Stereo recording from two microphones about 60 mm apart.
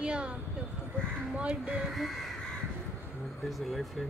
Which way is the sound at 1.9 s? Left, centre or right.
Centre.